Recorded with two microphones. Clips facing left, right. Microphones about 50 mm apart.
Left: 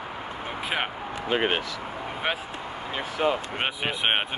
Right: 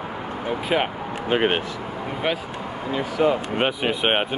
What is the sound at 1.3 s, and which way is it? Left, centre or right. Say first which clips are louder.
Speech: right 4 dB; centre.